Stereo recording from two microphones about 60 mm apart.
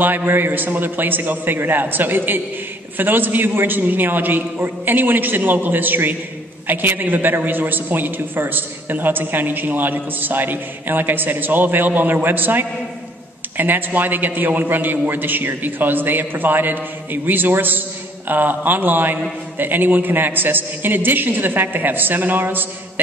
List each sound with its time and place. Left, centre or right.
0.0 s a man's voice: right